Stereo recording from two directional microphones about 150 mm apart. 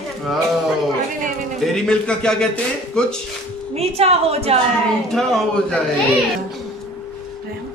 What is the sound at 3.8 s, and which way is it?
Speech, 45° right (ahead or behind).